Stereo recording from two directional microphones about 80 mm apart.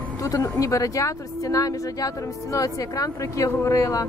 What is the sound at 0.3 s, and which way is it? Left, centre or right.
Speech, left.